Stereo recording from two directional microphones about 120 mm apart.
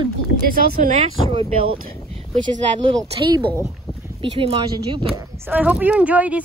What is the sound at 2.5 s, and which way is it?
Speech, 50° right (ahead or behind).